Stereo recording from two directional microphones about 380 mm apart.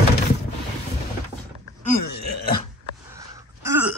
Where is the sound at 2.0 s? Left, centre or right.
Left.